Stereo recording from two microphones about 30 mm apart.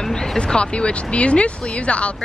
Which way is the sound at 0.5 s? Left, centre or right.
Left.